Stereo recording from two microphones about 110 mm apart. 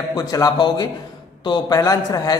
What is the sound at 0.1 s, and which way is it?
A man's voice, 35° left (ahead or behind).